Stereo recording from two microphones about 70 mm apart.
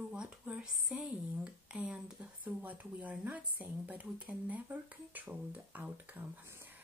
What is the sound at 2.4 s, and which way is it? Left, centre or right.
Speech, right.